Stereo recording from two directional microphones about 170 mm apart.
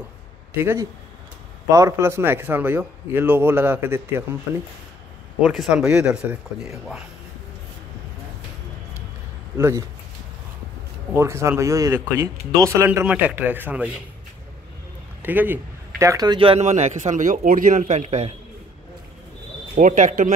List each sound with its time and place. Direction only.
0.6 s speech: 15° right (ahead or behind)
5.4 s speech: centre (ahead or behind)
9.6 s speech: 15° right (ahead or behind)
11.1 s speech: 15° right (ahead or behind)
15.2 s a man's voice: 10° right (ahead or behind); by 18.3 s 40° right (ahead or behind)
19.7 s speech: 50° right (ahead or behind)